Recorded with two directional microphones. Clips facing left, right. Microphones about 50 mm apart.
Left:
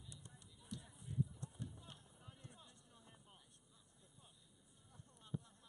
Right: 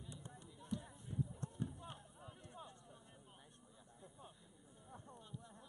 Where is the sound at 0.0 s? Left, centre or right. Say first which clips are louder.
Right 6 dB; right.